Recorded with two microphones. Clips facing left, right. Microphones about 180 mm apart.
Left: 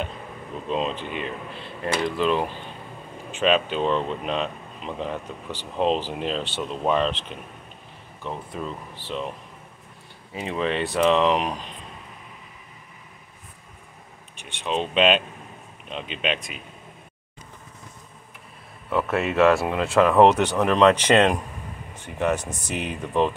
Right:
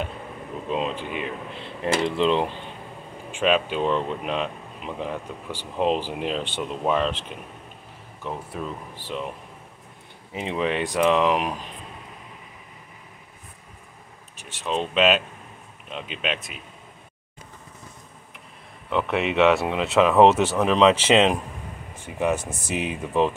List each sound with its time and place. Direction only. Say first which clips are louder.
0.7 s speech: left 1 dB; 10° right (ahead or behind)
2.0 s speech: right 1 dB; 25° right (ahead or behind)
3.3 s speech: even; 10° right (ahead or behind)
10.3 s speech: even; 20° right (ahead or behind)
14.3 s speech: even; centre (ahead or behind)
18.9 s speech: even; 5° left (ahead or behind)